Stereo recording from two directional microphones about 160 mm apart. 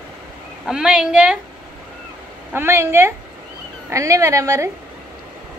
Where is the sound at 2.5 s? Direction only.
15° right (ahead or behind).